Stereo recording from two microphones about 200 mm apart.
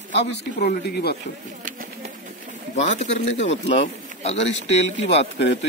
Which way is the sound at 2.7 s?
35° left (ahead or behind).